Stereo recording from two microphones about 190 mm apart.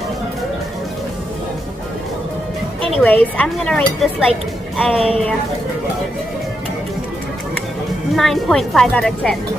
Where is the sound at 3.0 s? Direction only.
10° left (ahead or behind).